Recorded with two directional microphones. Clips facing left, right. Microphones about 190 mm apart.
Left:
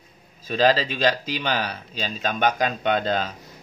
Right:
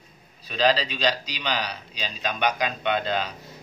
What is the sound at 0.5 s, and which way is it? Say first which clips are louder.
Speech: left 3 dB; 45° left (ahead or behind).